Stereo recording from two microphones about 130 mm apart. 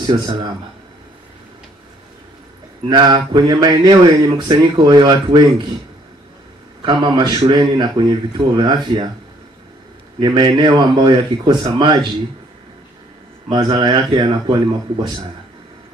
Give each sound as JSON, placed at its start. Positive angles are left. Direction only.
{"t": 2.9, "sound": "speech", "side_deg": -35}
{"t": 6.8, "sound": "speech", "side_deg": -35}
{"t": 10.2, "sound": "speech", "side_deg": -35}
{"t": 13.5, "sound": "speech", "side_deg": -35}